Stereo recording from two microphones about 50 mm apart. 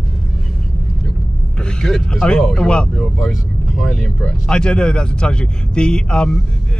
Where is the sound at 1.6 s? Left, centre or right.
Centre.